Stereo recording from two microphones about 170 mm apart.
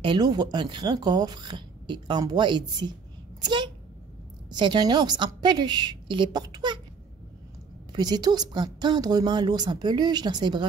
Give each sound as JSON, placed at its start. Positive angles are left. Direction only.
{"t": 0.0, "sound": "a child's voice", "side_deg": -25}
{"t": 7.9, "sound": "speech", "side_deg": -25}